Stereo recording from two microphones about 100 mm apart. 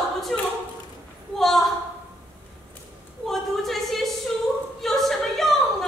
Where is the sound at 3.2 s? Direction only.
Centre (ahead or behind).